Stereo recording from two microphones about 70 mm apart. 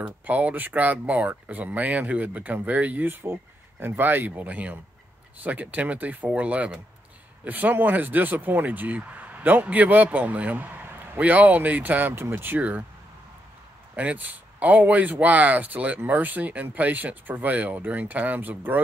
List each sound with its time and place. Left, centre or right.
0.0 s speech: right
13.9 s speech: right